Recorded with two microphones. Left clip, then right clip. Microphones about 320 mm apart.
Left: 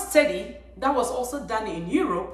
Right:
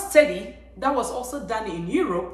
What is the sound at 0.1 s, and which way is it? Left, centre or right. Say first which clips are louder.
A man's voice: right 3 dB; centre.